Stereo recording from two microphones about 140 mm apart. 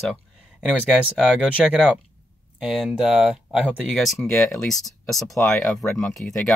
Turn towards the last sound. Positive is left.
turn(degrees=0)  # may be behind; listen again after turning